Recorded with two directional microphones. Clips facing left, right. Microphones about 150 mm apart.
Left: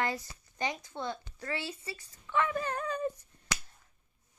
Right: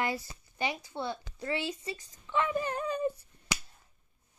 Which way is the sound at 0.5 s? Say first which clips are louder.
Right 1 dB; 10° right (ahead or behind).